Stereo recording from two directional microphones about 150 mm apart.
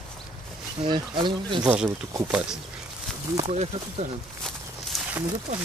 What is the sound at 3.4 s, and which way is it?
Speech, 50° right (ahead or behind).